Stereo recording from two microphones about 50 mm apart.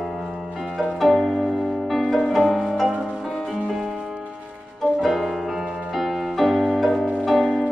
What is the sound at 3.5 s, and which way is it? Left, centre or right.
Music, centre.